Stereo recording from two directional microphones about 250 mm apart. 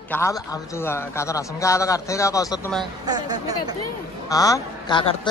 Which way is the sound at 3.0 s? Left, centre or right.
Centre.